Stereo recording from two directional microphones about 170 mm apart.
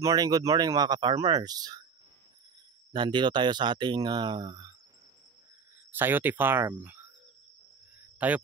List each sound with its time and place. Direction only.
0.0 s speech: 20° right (ahead or behind)
2.9 s speech: 25° right (ahead or behind)
5.9 s speech: 10° right (ahead or behind)
8.0 s cricket: 10° right (ahead or behind)